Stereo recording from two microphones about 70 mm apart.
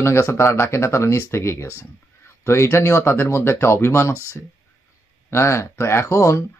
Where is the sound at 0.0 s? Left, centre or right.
Left.